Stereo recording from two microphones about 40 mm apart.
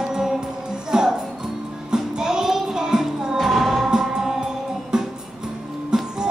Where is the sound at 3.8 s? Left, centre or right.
Centre.